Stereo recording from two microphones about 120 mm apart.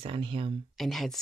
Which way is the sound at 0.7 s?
Centre (ahead or behind).